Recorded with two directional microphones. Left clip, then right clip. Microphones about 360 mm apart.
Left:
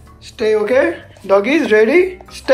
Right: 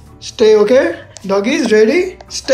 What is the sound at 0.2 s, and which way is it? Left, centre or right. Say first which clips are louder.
Speech: right 6 dB; centre.